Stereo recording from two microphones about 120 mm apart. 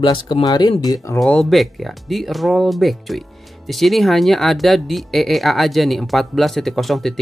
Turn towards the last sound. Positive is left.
turn(degrees=0)  # may be behind; listen again after turning